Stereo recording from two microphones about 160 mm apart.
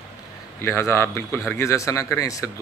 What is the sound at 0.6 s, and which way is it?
A man's voice, 15° left (ahead or behind).